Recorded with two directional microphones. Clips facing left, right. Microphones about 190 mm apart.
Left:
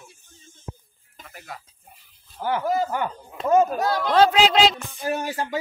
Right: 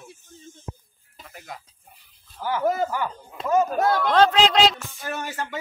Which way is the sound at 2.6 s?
50° right (ahead or behind).